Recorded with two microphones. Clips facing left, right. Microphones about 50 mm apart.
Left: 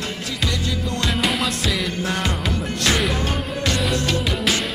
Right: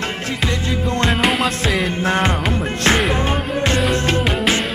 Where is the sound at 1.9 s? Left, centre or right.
Right.